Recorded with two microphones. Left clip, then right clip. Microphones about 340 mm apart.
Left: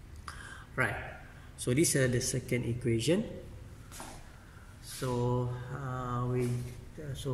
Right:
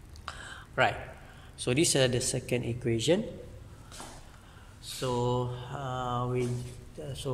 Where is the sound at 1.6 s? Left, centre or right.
Centre.